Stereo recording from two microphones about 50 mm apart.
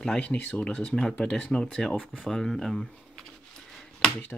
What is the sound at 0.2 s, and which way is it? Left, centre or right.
Speech, left.